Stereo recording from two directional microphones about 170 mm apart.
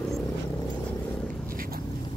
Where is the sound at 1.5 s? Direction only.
55° right (ahead or behind).